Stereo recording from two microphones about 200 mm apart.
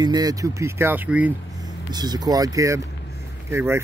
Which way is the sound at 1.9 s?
20° right (ahead or behind).